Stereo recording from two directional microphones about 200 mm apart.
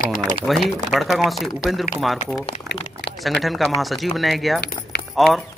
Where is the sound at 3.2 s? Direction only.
Centre (ahead or behind).